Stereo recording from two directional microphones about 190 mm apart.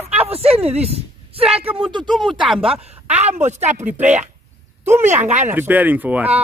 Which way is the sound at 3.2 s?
35° right (ahead or behind).